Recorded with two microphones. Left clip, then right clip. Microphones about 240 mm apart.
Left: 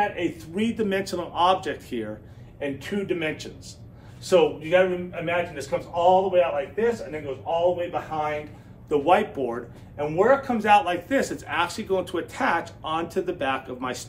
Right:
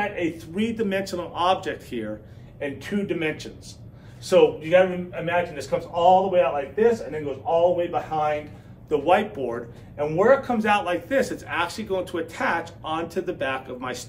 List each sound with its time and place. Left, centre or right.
0.0 s speech: centre